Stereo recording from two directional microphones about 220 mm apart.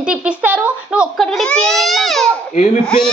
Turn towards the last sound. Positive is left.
turn(degrees=5)  # may be behind; listen again after turning